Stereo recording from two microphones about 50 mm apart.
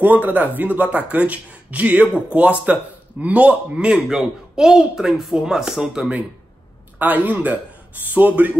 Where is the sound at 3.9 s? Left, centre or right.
Centre.